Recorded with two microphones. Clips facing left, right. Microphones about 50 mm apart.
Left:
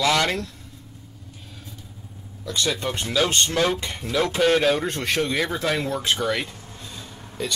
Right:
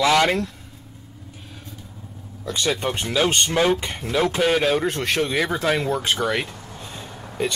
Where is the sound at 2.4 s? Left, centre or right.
Right.